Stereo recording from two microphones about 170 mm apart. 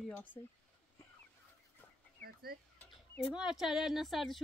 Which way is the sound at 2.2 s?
65° right (ahead or behind).